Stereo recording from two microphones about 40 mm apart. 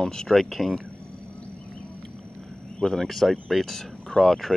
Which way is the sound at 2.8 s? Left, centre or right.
Centre.